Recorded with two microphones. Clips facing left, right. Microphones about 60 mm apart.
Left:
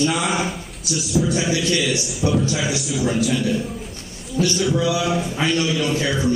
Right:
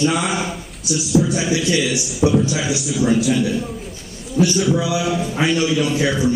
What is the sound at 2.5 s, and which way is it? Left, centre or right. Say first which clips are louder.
Speech: right 2 dB; centre.